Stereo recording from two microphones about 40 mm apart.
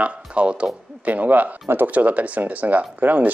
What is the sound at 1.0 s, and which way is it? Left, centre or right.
Speech, right.